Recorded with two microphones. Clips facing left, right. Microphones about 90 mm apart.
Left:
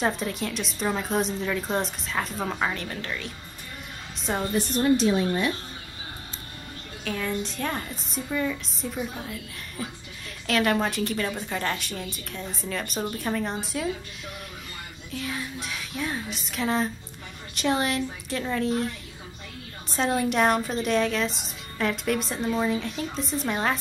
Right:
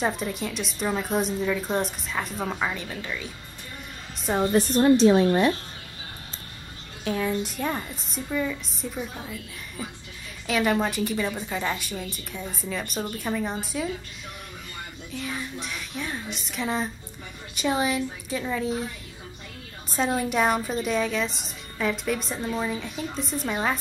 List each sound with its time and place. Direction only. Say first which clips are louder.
0.0 s speech: even; centre (ahead or behind)
4.5 s a woman's voice: right 4 dB; 40° right (ahead or behind)
7.1 s speech: right 3 dB; 15° right (ahead or behind)
15.0 s speech: left 1 dB; centre (ahead or behind)